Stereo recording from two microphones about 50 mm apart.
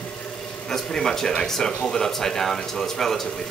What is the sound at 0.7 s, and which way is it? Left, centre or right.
Speech, centre.